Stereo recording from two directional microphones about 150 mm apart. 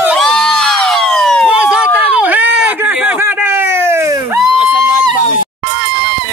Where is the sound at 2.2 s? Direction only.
10° right (ahead or behind).